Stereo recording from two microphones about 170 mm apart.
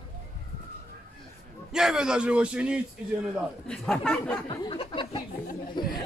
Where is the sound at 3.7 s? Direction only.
5° left (ahead or behind).